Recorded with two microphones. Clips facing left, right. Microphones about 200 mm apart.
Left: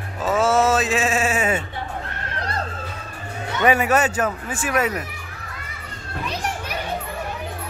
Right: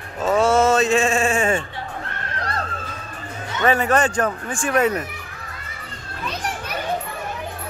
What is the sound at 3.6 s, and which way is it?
Speech, 10° left (ahead or behind).